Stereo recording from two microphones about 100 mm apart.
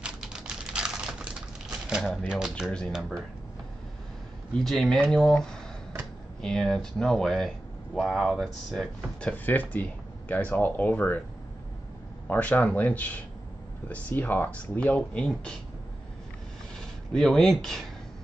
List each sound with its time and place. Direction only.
0.0 s typing: 10° right (ahead or behind)
1.9 s speech: 5° right (ahead or behind)
4.6 s speech: centre (ahead or behind)
9.5 s speech: 15° left (ahead or behind)
12.3 s speech: 15° left (ahead or behind)
17.1 s speech: 5° left (ahead or behind)